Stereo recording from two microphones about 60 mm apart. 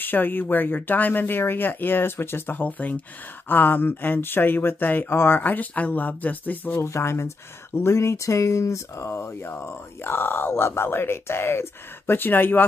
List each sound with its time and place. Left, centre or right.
0.0 s speech: left
6.8 s speech: left
12.1 s speech: left